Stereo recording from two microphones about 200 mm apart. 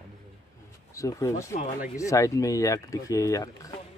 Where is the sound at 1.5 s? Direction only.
40° left (ahead or behind).